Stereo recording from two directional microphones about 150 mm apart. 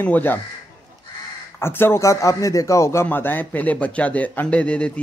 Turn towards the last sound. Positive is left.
turn(degrees=10)  # may be behind; listen again after turning